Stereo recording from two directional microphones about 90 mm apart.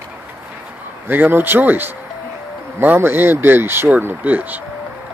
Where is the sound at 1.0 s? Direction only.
20° right (ahead or behind).